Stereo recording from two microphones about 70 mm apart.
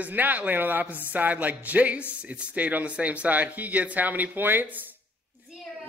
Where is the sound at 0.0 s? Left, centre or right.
Right.